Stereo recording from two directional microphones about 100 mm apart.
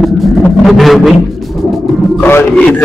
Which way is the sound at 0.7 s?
Centre (ahead or behind).